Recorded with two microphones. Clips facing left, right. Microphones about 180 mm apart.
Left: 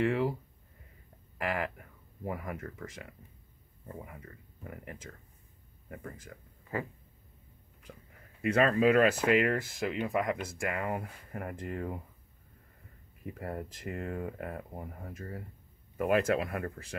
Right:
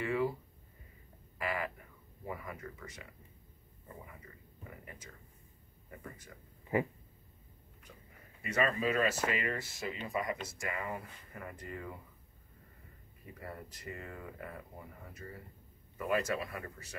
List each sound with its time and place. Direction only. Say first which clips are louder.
0.0 s speech: left 4 dB; 70° left (ahead or behind)
2.2 s speech: left 5 dB; 55° left (ahead or behind)
6.7 s a sound: right 4 dB; 20° right (ahead or behind)
7.9 s a sound: left 6 dB; 55° left (ahead or behind)
8.4 s speech: left 7 dB; 60° left (ahead or behind)
13.2 s speech: left 8 dB; 50° left (ahead or behind)
16.0 s speech: left 6 dB; 60° left (ahead or behind)